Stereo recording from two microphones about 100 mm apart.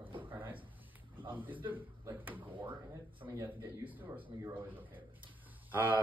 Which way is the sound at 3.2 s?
30° right (ahead or behind).